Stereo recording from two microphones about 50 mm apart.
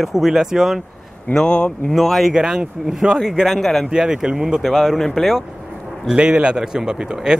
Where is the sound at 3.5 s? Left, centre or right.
Centre.